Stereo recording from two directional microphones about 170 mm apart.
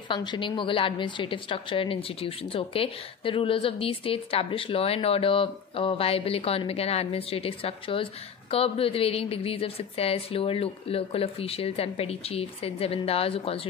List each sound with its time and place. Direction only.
0.1 s a woman's voice: 25° left (ahead or behind)